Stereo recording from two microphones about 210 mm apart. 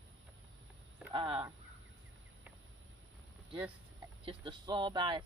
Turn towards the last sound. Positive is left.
turn(degrees=-20)  # may be behind; listen again after turning